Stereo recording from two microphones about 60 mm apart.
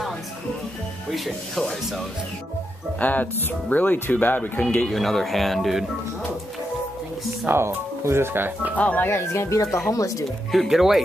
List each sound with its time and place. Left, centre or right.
1.1 s speech: centre
3.0 s speech: left
4.8 s speech: centre
7.4 s speech: right
8.7 s speech: left
9.0 s speech: left
9.8 s speech: left
10.5 s speech: centre